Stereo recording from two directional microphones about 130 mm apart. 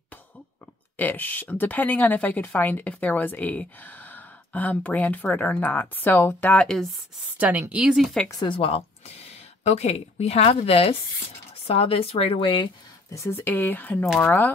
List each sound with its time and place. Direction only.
0.9 s speech: 15° left (ahead or behind)
7.3 s speech: 10° right (ahead or behind)
8.5 s speech: 45° left (ahead or behind)
13.1 s speech: 20° left (ahead or behind)